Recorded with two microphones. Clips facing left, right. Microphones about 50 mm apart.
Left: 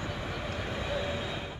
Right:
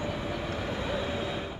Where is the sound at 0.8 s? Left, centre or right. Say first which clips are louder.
Even; centre.